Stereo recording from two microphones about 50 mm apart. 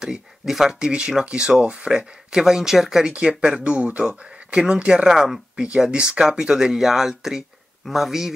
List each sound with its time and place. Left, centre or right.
0.0 s speech: centre
3.1 s speech: right